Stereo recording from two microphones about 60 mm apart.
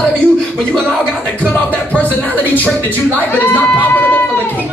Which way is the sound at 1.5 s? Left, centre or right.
Left.